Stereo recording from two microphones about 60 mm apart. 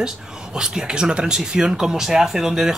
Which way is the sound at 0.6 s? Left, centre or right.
Centre.